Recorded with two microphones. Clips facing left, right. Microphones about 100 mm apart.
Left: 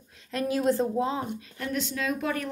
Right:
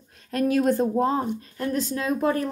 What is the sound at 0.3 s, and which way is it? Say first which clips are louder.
Speech: right 4 dB; 50° right (ahead or behind).